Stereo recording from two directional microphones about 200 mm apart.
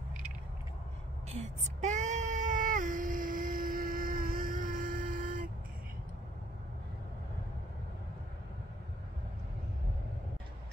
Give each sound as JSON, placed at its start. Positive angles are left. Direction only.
{"t": 1.3, "sound": "child singing", "side_deg": -35}